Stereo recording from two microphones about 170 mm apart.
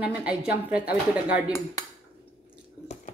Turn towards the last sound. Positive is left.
turn(degrees=45)  # may be behind; listen again after turning